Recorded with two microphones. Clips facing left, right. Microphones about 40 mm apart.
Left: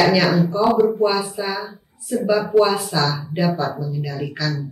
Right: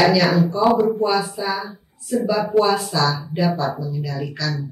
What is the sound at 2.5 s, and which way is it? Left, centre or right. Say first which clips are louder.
Speech: even; centre.